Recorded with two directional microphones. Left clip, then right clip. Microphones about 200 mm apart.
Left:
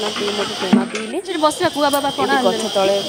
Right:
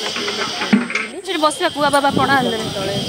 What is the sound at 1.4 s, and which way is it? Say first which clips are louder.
Speech: even; centre (ahead or behind).